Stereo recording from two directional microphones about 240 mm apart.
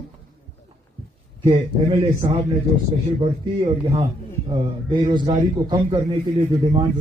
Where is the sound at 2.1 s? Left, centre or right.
Centre.